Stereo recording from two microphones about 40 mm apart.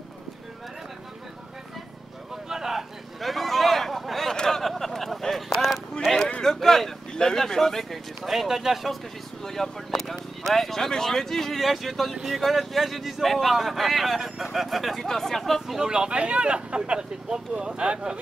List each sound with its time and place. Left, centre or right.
2.5 s vehicle: centre
3.2 s a sound: centre
6.4 s vehicle: centre
7.2 s a sound: centre
9.4 s speech: centre
15.6 s speech: centre
15.9 s speech: right